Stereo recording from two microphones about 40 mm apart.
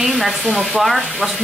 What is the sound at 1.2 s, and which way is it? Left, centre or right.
Speech, centre.